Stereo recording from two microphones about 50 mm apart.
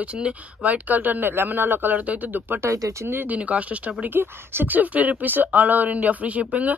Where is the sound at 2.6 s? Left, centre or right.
Right.